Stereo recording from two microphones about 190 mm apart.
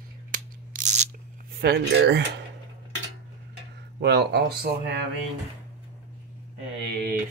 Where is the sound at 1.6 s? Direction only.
60° right (ahead or behind).